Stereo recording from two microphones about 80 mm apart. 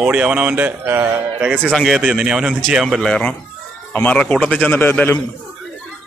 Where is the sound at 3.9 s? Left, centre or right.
Centre.